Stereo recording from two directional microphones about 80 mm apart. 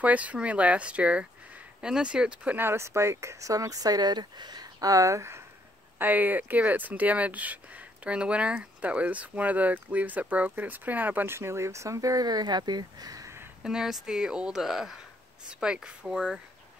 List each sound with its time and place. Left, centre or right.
0.0 s speech: centre
2.5 s speech: right
5.9 s speech: right
13.6 s speech: centre